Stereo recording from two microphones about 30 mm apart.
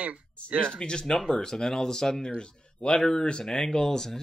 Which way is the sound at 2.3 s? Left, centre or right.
Left.